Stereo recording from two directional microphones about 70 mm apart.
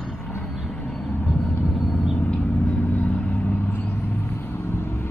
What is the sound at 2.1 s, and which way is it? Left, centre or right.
Vehicle, left.